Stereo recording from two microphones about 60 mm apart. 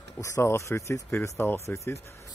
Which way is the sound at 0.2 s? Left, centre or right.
Left.